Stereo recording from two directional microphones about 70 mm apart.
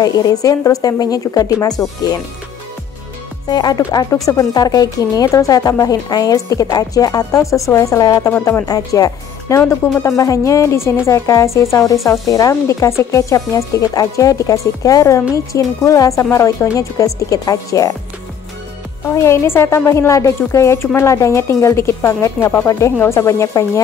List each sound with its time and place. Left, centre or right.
0.0 s speech: left
3.4 s speech: left
8.3 s a woman's voice: left
8.6 s a woman's voice: left
19.1 s a woman's voice: left